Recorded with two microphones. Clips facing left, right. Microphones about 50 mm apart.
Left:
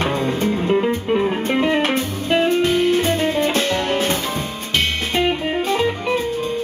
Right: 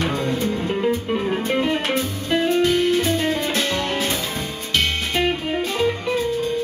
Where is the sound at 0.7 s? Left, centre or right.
Left.